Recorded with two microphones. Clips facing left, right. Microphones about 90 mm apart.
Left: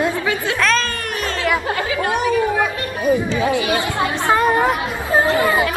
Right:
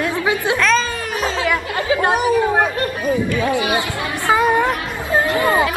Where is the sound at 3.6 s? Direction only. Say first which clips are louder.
Even; 20° right (ahead or behind).